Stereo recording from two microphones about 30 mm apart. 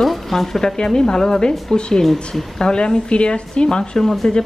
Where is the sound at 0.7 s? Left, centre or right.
Left.